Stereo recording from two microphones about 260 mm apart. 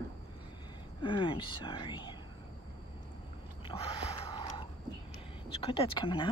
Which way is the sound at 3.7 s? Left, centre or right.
Left.